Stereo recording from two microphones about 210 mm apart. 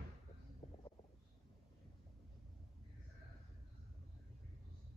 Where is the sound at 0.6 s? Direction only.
30° left (ahead or behind).